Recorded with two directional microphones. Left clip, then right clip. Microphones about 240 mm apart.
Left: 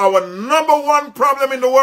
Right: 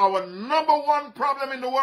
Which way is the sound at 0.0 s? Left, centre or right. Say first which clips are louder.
Left 7 dB; centre.